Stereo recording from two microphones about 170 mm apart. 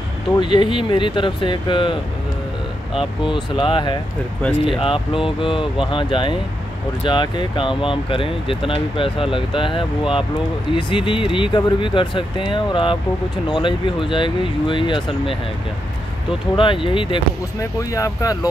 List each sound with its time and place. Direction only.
0.4 s speech: 30° left (ahead or behind)
3.6 s speech: 30° left (ahead or behind)
4.4 s speech: 5° left (ahead or behind)
4.7 s speech: 30° left (ahead or behind)
16.5 s speech: 30° left (ahead or behind)
17.6 s speech: 20° left (ahead or behind)